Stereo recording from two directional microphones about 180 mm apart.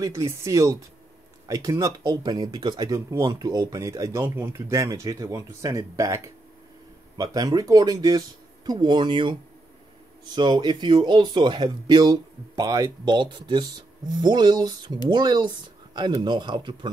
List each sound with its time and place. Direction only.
0.0 s speech: 15° right (ahead or behind)